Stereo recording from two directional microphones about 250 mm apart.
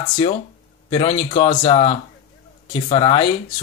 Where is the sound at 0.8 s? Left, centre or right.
Left.